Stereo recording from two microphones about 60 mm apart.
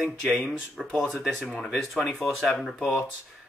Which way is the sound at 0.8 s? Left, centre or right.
Centre.